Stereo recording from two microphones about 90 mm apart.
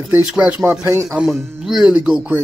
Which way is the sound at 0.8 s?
30° right (ahead or behind).